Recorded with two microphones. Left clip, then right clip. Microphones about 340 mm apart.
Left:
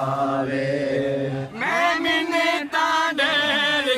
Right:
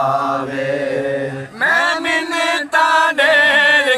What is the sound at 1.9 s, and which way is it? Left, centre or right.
Chant, centre.